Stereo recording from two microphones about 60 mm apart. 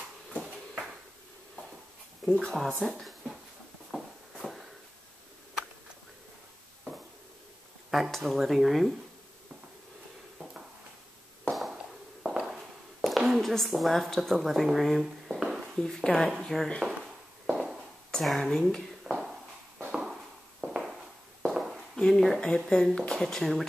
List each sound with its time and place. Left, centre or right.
2.2 s speech: centre
2.9 s a sound: centre
7.9 s speech: centre
11.7 s walk: centre
13.0 s a woman's voice: centre
15.8 s speech: centre
17.0 s a sound: centre
18.1 s speech: centre
19.0 s a sound: centre
20.6 s walk: centre
21.9 s speech: centre